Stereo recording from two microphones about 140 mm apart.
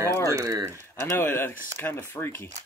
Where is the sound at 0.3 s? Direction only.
25° right (ahead or behind).